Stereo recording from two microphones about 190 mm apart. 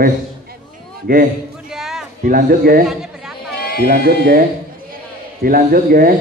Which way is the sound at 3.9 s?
50° right (ahead or behind).